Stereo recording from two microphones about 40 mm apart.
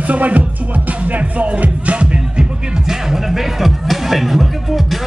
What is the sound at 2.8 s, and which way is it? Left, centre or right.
Music, centre.